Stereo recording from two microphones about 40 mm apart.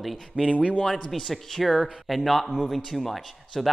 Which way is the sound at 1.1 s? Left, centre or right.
Centre.